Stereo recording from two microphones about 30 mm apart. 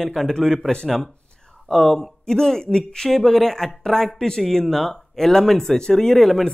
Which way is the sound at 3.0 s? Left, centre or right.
Centre.